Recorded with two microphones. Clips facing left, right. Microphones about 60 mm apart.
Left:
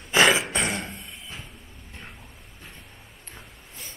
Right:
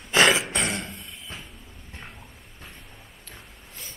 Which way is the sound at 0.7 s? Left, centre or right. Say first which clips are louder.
Left 1 dB; centre.